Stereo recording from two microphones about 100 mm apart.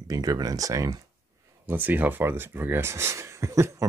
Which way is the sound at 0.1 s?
35° right (ahead or behind).